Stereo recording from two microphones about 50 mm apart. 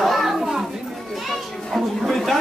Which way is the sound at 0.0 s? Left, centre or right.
Centre.